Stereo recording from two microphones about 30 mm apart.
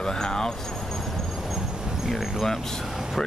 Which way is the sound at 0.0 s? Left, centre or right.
Centre.